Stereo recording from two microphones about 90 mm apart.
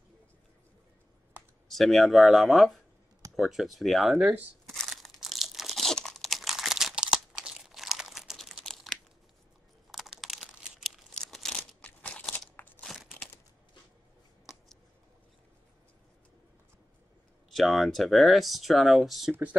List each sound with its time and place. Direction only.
1.7 s speech: centre (ahead or behind)
4.6 s crumpling: centre (ahead or behind)
9.8 s computer keyboard: 5° right (ahead or behind)
10.8 s crumpling: centre (ahead or behind)
11.8 s crunch: 15° left (ahead or behind)
12.8 s a sound: 5° right (ahead or behind)
17.5 s speech: centre (ahead or behind)